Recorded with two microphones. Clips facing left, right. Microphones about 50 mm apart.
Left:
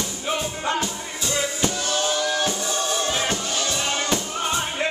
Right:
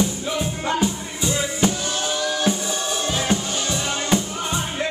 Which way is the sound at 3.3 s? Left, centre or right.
Centre.